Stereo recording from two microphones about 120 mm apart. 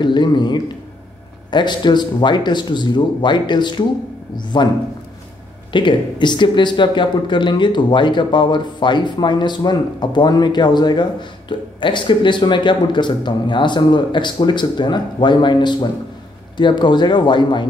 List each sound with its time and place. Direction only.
0.0 s speech: 40° left (ahead or behind)
5.7 s speech: 40° left (ahead or behind)